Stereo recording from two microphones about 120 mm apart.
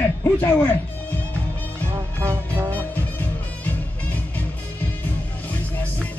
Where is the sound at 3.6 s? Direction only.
15° left (ahead or behind).